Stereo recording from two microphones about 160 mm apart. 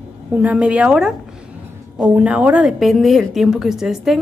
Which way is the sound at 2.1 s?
10° right (ahead or behind).